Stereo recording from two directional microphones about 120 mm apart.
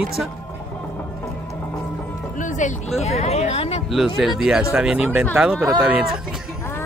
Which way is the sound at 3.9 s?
Centre (ahead or behind).